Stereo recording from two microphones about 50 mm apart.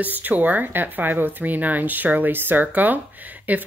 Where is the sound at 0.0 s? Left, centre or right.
Right.